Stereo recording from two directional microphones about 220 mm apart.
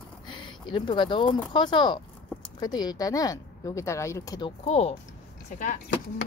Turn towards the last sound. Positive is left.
turn(degrees=35)  # may be behind; listen again after turning